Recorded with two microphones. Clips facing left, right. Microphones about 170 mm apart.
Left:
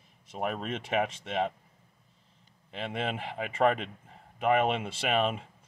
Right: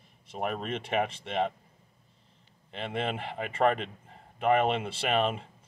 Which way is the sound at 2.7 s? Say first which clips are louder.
Right 1 dB; 5° left (ahead or behind).